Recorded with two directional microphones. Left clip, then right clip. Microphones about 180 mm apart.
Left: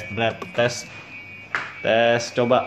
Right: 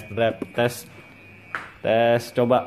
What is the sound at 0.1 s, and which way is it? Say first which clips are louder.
Speech: right 1 dB; 35° right (ahead or behind).